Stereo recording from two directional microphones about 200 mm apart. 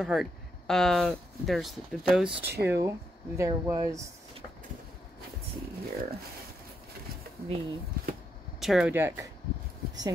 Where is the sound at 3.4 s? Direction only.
15° right (ahead or behind).